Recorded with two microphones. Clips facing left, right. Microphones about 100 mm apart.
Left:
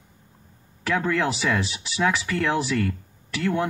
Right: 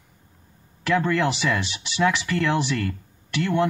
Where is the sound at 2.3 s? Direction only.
70° right (ahead or behind).